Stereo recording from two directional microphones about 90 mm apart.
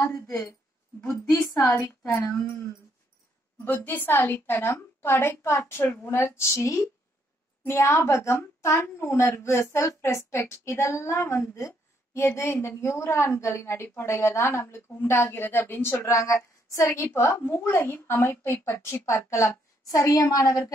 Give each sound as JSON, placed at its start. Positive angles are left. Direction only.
{"t": 0.0, "sound": "a woman's voice", "side_deg": 25}
{"t": 1.3, "sound": "a woman's voice", "side_deg": 5}
{"t": 2.3, "sound": "a woman's voice", "side_deg": 30}
{"t": 16.0, "sound": "a woman's voice", "side_deg": 35}